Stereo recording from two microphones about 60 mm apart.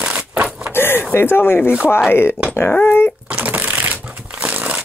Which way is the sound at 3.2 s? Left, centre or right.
Right.